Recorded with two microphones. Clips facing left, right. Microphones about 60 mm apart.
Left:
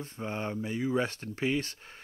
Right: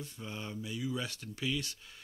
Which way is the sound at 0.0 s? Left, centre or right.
Left.